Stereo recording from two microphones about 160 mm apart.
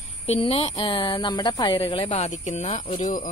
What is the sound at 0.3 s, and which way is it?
A woman's voice, 40° left (ahead or behind).